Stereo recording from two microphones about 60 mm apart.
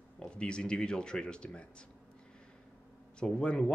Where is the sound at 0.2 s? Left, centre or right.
Centre.